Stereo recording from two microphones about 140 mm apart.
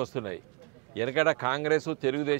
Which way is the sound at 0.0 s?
20° right (ahead or behind).